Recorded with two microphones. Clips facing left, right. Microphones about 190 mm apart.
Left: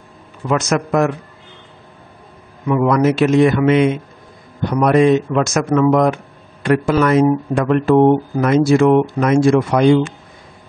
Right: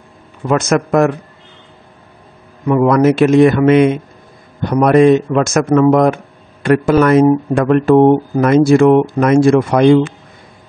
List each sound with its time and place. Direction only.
0.5 s a man's voice: 50° right (ahead or behind)
2.7 s a man's voice: 50° right (ahead or behind)